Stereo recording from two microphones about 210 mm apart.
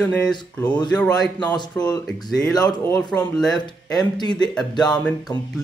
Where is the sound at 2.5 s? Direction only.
15° left (ahead or behind).